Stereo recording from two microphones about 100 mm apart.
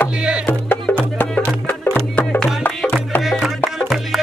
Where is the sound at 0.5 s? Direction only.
15° left (ahead or behind).